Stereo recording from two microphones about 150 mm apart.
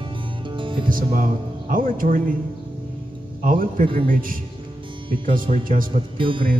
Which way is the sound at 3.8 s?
35° right (ahead or behind).